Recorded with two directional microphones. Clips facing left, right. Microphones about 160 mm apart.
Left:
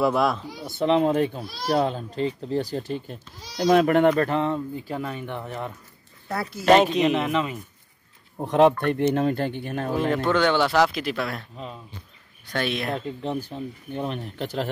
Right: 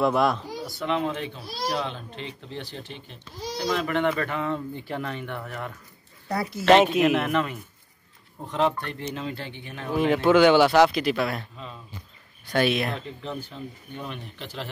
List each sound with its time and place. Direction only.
0.0 s speech: centre (ahead or behind)
0.7 s speech: 30° left (ahead or behind)
4.8 s speech: 10° left (ahead or behind)
6.6 s speech: centre (ahead or behind)
8.4 s speech: 60° left (ahead or behind)
9.9 s speech: centre (ahead or behind)
12.5 s speech: 5° right (ahead or behind)
13.5 s speech: 40° left (ahead or behind)